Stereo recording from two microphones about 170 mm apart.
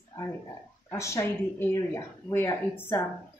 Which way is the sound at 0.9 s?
15° left (ahead or behind).